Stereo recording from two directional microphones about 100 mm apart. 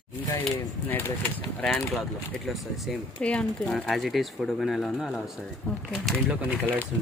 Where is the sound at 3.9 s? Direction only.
Centre (ahead or behind).